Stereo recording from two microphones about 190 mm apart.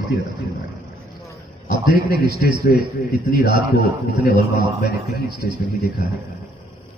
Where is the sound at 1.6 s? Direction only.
50° left (ahead or behind).